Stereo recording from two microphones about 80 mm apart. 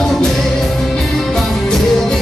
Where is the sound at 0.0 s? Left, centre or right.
Centre.